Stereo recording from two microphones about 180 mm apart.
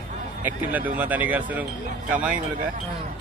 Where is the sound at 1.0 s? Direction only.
10° right (ahead or behind).